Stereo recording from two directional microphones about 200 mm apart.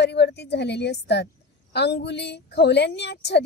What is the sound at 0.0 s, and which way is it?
A woman's voice, 55° left (ahead or behind).